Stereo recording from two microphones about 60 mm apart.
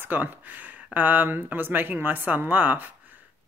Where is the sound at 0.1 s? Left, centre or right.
Right.